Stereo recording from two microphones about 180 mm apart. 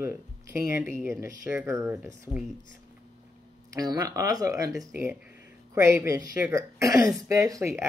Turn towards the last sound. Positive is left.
turn(degrees=-15)  # may be behind; listen again after turning